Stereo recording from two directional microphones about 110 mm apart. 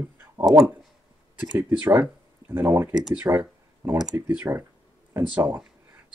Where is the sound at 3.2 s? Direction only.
20° right (ahead or behind).